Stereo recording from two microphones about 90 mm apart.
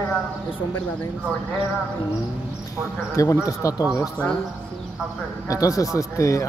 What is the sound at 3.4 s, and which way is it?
Speech, 40° left (ahead or behind).